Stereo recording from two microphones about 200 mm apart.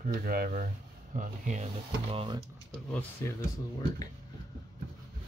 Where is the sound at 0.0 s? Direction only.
45° right (ahead or behind).